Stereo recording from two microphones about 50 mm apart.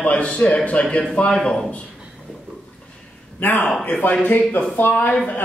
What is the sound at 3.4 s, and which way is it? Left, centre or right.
Speech, left.